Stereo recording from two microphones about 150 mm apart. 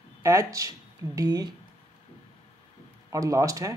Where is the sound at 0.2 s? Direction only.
20° right (ahead or behind).